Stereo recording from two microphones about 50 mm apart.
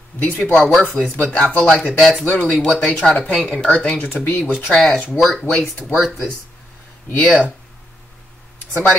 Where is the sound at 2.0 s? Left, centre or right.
Centre.